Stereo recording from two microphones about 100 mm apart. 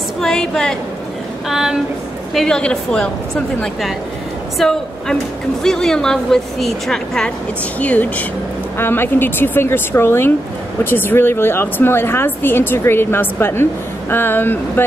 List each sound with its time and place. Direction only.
0.2 s a woman's voice: 5° left (ahead or behind)
1.5 s speech: 5° right (ahead or behind)
4.6 s a woman's voice: 5° left (ahead or behind); by 14.9 s 20° left (ahead or behind)